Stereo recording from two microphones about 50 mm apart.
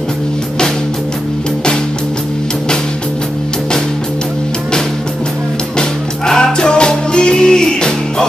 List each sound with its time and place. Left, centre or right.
5.8 s music: centre